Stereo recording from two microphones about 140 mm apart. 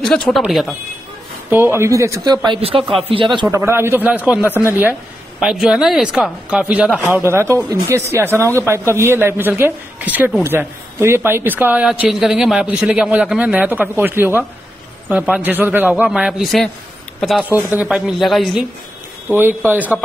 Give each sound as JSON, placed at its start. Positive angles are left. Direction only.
{"t": 0.0, "sound": "speech", "side_deg": 5}
{"t": 1.5, "sound": "speech", "side_deg": -15}
{"t": 3.5, "sound": "a woman's voice", "side_deg": -20}
{"t": 8.3, "sound": "speech", "side_deg": 15}
{"t": 8.5, "sound": "a woman's voice", "side_deg": -20}
{"t": 16.1, "sound": "speech", "side_deg": -5}
{"t": 19.2, "sound": "a woman's voice", "side_deg": -15}